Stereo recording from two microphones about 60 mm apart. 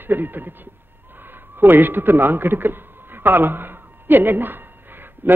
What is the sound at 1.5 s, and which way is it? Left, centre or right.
Speech, right.